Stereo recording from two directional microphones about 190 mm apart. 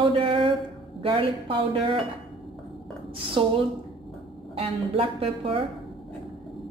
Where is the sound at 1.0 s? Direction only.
25° right (ahead or behind).